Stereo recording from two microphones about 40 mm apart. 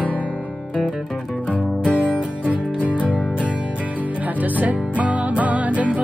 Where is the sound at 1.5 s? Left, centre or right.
Right.